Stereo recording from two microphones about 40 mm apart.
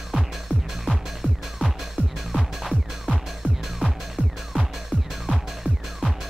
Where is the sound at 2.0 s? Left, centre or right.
Left.